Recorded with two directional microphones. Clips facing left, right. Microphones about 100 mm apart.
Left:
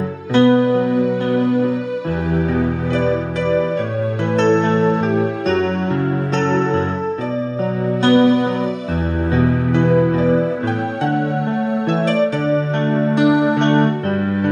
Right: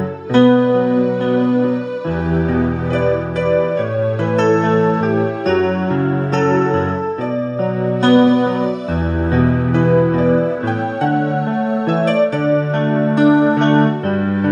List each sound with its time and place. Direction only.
0.3 s music: 40° right (ahead or behind)
3.0 s music: 40° right (ahead or behind)
8.0 s music: 35° right (ahead or behind)
11.9 s music: 40° right (ahead or behind)